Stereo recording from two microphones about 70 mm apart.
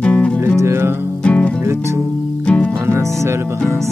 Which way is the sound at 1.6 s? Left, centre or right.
Right.